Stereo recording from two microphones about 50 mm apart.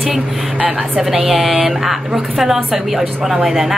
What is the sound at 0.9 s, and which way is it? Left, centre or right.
A woman's voice, centre.